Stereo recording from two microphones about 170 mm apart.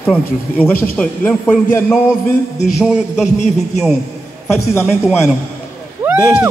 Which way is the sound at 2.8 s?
5° right (ahead or behind).